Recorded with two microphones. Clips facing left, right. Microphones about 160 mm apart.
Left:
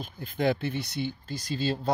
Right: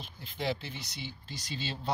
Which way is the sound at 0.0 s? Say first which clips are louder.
Left 8 dB; 50° left (ahead or behind).